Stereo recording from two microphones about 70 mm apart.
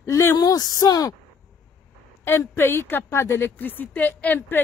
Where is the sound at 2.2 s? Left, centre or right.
Left.